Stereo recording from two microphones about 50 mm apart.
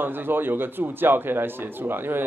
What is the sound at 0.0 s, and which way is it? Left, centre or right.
A man's voice, right.